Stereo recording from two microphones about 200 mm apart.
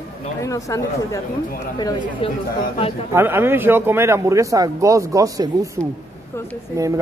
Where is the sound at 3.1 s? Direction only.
10° right (ahead or behind).